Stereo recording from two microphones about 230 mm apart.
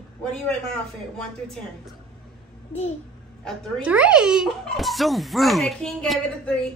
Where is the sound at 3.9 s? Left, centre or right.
Centre.